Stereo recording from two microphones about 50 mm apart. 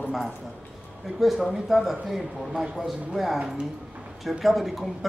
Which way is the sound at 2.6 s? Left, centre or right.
Centre.